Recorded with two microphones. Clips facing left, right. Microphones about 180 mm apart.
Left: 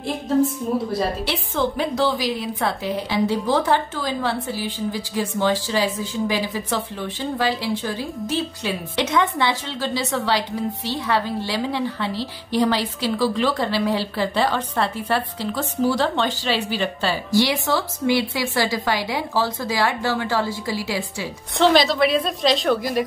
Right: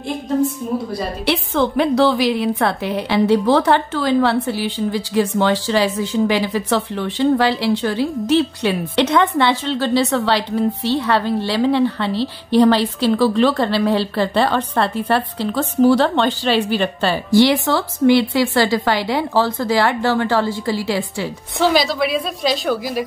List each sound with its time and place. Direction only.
1.2 s a woman's voice: 65° right (ahead or behind)
21.5 s a woman's voice: 5° right (ahead or behind)